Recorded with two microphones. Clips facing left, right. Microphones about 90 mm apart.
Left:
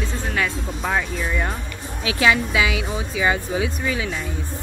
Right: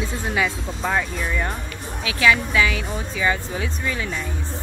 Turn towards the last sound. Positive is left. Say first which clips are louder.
# left 2 dB
turn(degrees=10)  # may be behind; listen again after turning